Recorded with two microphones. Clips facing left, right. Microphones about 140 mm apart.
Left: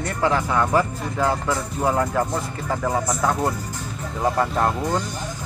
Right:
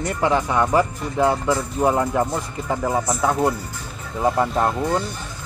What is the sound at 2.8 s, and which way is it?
Speech, 5° right (ahead or behind).